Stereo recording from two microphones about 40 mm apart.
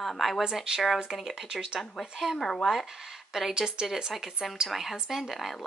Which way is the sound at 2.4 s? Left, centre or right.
Centre.